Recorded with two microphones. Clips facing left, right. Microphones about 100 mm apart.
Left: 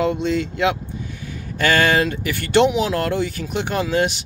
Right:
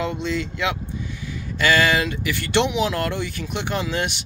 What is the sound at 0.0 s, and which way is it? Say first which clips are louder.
Speech: left 5 dB; 45° left (ahead or behind).